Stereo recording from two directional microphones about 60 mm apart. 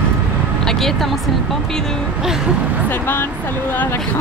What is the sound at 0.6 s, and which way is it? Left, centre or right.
Speech, centre.